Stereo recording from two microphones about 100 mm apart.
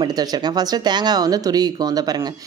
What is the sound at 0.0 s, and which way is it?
Speech, 40° right (ahead or behind).